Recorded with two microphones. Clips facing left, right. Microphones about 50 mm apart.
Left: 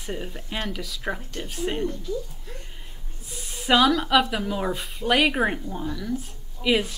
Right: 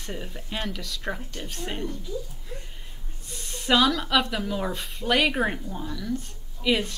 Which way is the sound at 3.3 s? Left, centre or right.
Centre.